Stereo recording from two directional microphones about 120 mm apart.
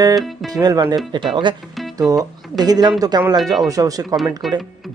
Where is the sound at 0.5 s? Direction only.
30° right (ahead or behind).